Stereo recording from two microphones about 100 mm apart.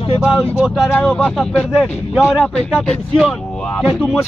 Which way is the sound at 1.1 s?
15° left (ahead or behind).